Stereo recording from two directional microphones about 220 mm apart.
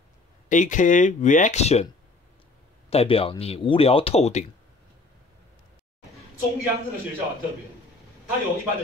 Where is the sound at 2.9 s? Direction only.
25° left (ahead or behind).